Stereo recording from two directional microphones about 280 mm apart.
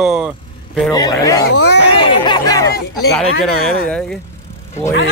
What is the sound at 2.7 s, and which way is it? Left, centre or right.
Speech, left.